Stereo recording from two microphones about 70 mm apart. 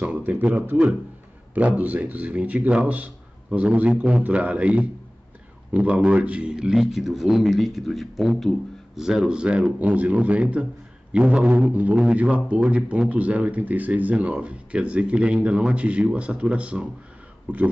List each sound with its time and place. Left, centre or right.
0.0 s a man's voice: right